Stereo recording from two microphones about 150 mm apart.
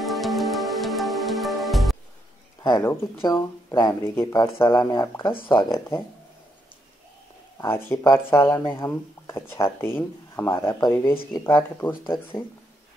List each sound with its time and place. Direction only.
0.0 s music: centre (ahead or behind)
2.8 s speech: 15° left (ahead or behind)
7.5 s speech: 15° left (ahead or behind)